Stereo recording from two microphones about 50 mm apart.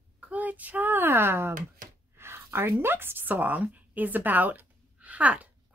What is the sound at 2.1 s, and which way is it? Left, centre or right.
A woman's voice, right.